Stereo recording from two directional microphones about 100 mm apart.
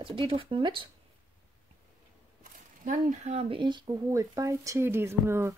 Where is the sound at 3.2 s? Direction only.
90° right.